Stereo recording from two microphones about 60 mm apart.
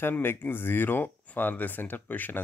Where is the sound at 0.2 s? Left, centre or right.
Left.